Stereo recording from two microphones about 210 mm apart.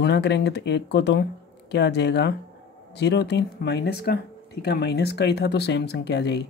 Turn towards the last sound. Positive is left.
turn(degrees=55)  # may be behind; listen again after turning